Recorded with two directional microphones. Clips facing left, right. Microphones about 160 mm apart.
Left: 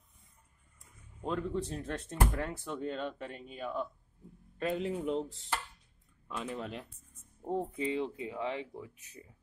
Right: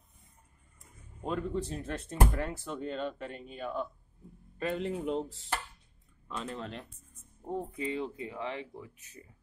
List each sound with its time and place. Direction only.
1.2 s speech: 5° right (ahead or behind)
6.3 s speech: 10° left (ahead or behind)
7.5 s speech: 25° left (ahead or behind)